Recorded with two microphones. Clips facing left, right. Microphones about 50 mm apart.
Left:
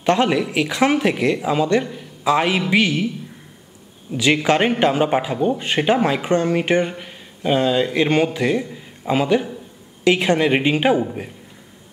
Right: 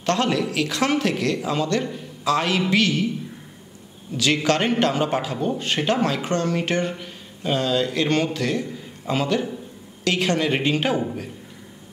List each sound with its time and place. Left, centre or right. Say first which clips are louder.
0.0 s a man's voice: left 4 dB; centre
4.1 s a man's voice: left 4 dB; centre